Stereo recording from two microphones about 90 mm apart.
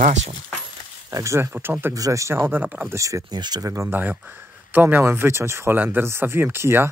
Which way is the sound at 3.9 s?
20° right (ahead or behind).